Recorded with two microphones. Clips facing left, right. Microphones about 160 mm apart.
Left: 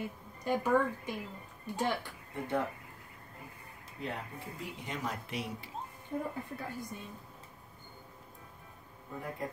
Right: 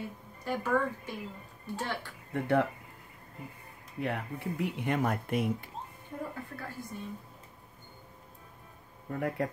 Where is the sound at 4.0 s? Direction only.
65° right (ahead or behind).